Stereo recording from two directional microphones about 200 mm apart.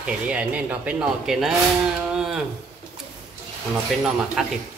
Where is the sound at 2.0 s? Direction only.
Centre (ahead or behind).